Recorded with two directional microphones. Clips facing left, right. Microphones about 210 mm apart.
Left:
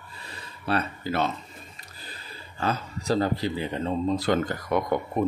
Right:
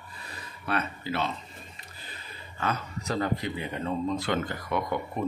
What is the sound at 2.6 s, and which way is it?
Speech, 30° left (ahead or behind).